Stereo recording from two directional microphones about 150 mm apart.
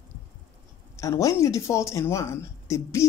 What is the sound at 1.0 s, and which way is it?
Speech, 20° left (ahead or behind).